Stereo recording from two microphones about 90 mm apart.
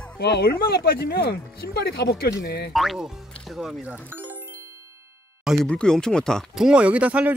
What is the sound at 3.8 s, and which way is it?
Speech, 15° right (ahead or behind).